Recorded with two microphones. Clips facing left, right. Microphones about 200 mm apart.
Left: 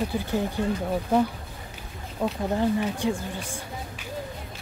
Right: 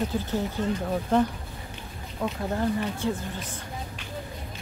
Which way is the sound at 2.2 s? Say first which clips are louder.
Left 3 dB; 15° left (ahead or behind).